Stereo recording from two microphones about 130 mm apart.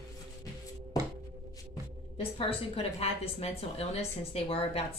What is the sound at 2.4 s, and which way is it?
A woman's voice, 45° left (ahead or behind).